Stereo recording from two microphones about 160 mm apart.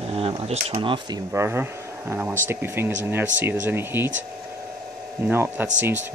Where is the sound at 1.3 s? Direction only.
15° right (ahead or behind).